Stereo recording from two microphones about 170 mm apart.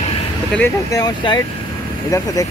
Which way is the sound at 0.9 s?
25° left (ahead or behind).